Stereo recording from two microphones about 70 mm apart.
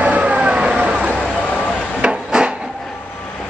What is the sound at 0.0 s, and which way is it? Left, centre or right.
Vehicle, centre.